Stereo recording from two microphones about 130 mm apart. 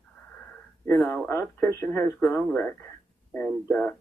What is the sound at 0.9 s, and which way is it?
Speech, 10° left (ahead or behind).